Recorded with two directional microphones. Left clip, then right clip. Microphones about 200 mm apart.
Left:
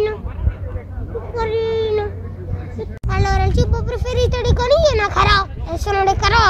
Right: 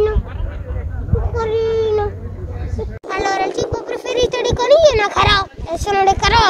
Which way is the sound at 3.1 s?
35° right (ahead or behind).